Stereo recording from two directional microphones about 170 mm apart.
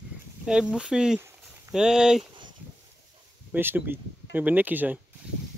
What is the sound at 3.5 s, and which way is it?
Speech, 10° right (ahead or behind).